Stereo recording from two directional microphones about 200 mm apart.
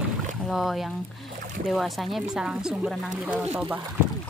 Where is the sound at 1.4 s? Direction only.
45° right (ahead or behind).